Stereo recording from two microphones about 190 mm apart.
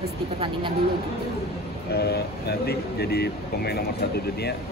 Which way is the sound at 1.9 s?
60° left (ahead or behind).